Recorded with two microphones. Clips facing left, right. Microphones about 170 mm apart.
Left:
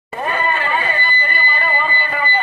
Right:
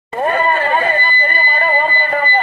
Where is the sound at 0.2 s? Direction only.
45° right (ahead or behind).